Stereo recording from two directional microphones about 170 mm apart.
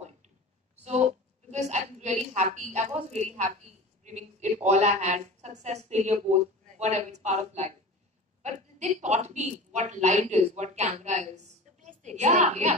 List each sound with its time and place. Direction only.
1.5 s a woman's voice: 45° right (ahead or behind)